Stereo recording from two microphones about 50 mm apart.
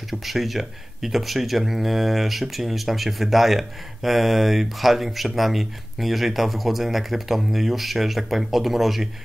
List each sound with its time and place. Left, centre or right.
0.1 s speech: centre